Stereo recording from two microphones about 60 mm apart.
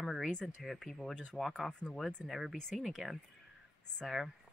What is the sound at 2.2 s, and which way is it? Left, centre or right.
Speech, centre.